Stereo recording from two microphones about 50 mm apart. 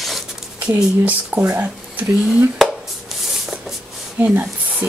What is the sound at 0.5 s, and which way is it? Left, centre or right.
Speech, right.